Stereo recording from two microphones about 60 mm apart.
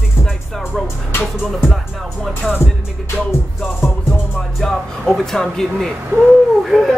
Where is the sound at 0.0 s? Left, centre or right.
Centre.